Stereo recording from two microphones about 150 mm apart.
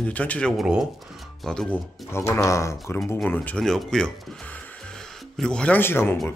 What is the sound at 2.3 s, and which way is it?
Speech, 20° left (ahead or behind).